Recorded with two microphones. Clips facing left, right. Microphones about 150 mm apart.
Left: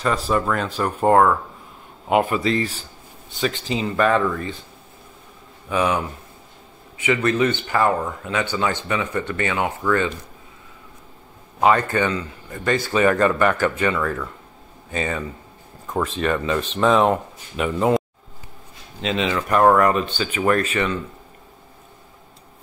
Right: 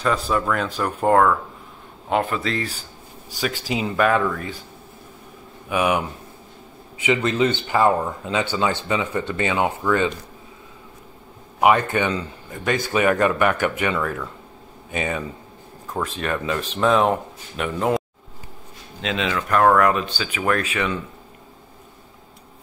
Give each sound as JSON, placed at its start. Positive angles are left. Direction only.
{"t": 0.0, "sound": "speech", "side_deg": 0}
{"t": 5.7, "sound": "speech", "side_deg": -15}
{"t": 7.1, "sound": "speech", "side_deg": -20}
{"t": 11.6, "sound": "speech", "side_deg": -15}
{"t": 12.4, "sound": "a man's voice", "side_deg": -5}